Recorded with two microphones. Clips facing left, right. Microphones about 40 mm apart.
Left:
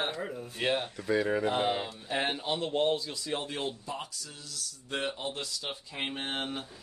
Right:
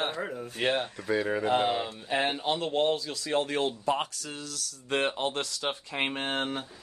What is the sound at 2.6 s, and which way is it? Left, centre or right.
Speech, right.